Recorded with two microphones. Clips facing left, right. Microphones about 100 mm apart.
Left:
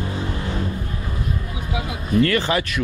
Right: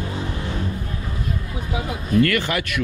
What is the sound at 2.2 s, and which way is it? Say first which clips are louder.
Speech: left 1 dB; 25° left (ahead or behind).